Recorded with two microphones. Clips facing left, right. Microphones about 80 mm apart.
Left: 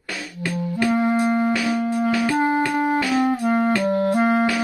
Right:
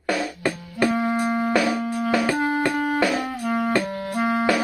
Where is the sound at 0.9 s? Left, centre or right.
Left.